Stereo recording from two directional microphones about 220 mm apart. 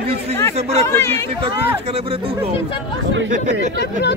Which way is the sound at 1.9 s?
25° right (ahead or behind).